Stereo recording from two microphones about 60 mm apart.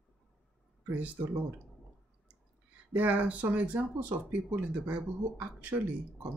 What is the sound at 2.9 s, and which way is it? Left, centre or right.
Speech, right.